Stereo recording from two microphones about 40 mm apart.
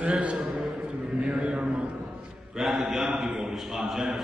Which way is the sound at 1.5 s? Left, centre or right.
Right.